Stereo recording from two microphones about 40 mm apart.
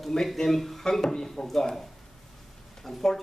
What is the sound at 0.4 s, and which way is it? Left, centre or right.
A man's voice, centre.